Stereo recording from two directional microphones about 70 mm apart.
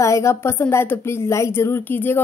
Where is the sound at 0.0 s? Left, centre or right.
Left.